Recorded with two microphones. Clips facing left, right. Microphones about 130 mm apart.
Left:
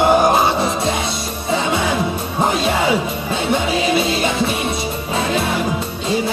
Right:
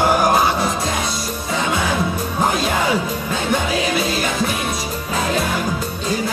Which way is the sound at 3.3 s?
25° left (ahead or behind).